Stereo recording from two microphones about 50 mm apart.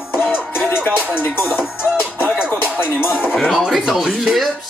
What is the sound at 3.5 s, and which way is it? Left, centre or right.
Speech, centre.